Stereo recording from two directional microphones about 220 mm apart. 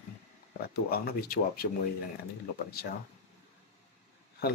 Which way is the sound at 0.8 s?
45° left (ahead or behind).